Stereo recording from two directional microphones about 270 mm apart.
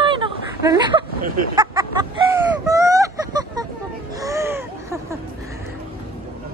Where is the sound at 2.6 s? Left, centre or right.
Centre.